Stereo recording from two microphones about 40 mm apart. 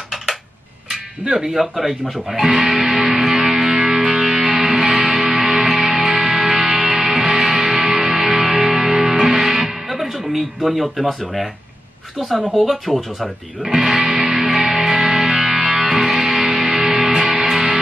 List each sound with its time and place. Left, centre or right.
1.2 s speech: centre
2.5 s music: right
2.8 s music: centre
12.2 s speech: centre
14.3 s music: centre